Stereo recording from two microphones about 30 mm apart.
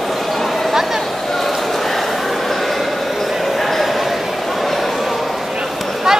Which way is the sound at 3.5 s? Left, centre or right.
Centre.